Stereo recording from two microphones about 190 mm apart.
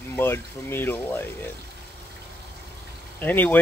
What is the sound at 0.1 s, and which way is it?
Speech, 10° left (ahead or behind).